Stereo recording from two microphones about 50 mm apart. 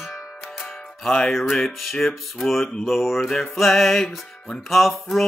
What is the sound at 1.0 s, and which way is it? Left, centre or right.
Music, centre.